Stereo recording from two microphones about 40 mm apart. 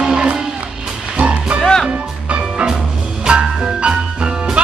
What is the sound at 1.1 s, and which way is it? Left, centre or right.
Music, right.